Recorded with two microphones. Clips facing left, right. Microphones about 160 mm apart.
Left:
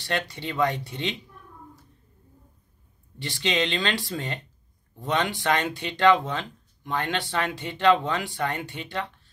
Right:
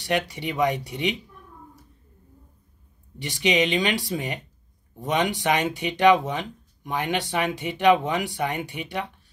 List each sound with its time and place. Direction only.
0.0 s speech: 15° right (ahead or behind)
3.2 s speech: 15° right (ahead or behind)